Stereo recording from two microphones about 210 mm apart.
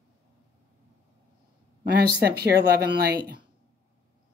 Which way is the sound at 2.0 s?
50° right (ahead or behind).